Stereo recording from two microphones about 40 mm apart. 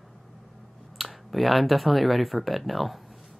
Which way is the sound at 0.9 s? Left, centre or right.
Centre.